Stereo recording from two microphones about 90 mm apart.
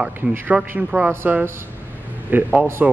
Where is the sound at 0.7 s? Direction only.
15° right (ahead or behind).